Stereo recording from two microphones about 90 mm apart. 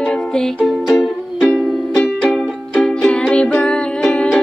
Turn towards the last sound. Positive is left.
turn(degrees=10)  # may be behind; listen again after turning